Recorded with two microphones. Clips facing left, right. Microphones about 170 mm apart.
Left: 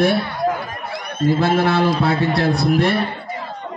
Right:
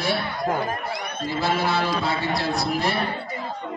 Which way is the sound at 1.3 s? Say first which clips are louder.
Left 7 dB; 50° left (ahead or behind).